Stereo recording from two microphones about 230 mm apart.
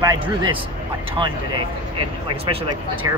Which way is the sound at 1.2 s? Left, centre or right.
Centre.